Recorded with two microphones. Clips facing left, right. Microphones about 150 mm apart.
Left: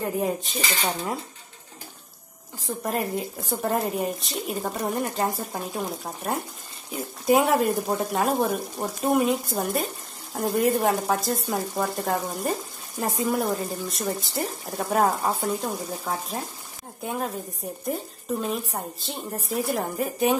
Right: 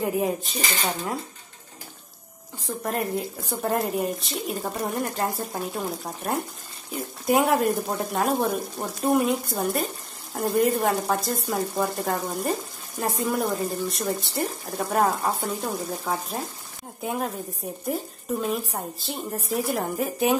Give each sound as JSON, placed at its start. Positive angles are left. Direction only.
{"t": 0.0, "sound": "speech", "side_deg": 0}
{"t": 0.6, "sound": "speech", "side_deg": -45}
{"t": 2.6, "sound": "speech", "side_deg": 0}